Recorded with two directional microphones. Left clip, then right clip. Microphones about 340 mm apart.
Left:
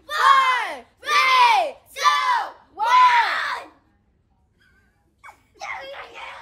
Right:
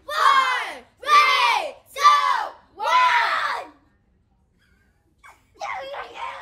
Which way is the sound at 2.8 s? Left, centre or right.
Centre.